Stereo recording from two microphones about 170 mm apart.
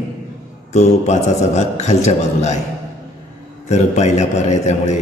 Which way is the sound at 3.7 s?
40° left (ahead or behind).